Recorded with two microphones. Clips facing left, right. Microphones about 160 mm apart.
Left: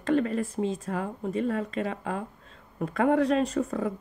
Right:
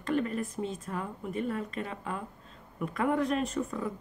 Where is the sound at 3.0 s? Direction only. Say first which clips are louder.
Left 6 dB; 75° left (ahead or behind).